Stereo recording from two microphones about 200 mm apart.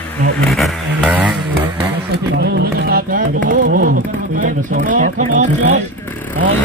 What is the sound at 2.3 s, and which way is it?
Music, 55° right (ahead or behind).